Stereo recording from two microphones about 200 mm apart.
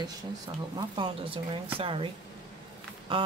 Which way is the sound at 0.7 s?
25° right (ahead or behind).